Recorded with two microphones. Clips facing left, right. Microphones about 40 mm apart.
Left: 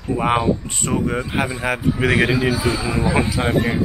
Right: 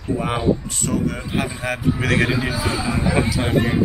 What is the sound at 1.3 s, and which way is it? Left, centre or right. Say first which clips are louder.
A man's voice: left 2 dB; centre.